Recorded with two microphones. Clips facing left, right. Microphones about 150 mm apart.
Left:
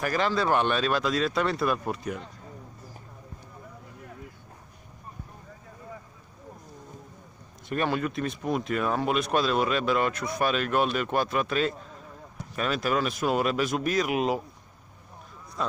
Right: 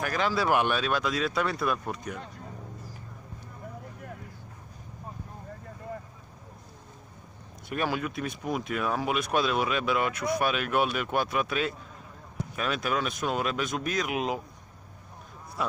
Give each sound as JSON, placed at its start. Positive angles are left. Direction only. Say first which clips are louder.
{"t": 0.0, "sound": "speech", "louder": "left 2 dB", "side_deg": 0}
{"t": 7.7, "sound": "speech", "louder": "left 3 dB", "side_deg": -5}